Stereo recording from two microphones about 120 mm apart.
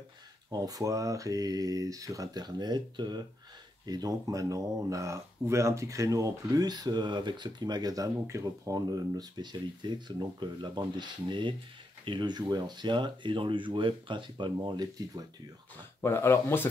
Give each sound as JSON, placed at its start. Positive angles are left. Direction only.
{"t": 0.5, "sound": "speech", "side_deg": -30}
{"t": 16.0, "sound": "speech", "side_deg": 20}